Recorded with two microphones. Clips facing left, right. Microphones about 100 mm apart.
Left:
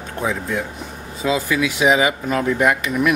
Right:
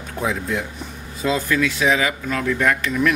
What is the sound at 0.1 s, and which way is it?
A man's voice, centre (ahead or behind).